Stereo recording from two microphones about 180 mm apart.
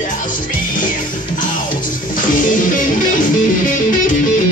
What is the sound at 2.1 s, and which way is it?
Music, 45° left (ahead or behind).